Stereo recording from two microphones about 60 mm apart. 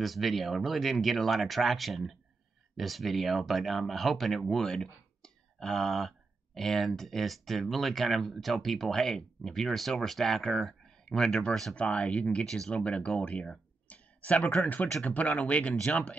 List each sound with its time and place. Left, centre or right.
0.0 s speech: centre
12.4 s speech: centre